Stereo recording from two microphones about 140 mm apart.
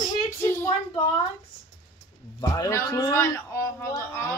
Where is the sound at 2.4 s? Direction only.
20° left (ahead or behind).